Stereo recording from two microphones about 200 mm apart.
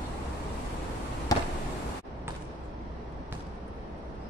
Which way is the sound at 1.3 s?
20° left (ahead or behind).